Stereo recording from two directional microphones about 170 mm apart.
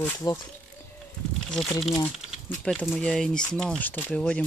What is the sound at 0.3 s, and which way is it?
Speech, 25° left (ahead or behind).